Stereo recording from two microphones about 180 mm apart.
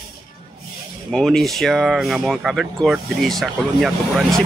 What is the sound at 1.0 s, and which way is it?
Speech, 5° left (ahead or behind).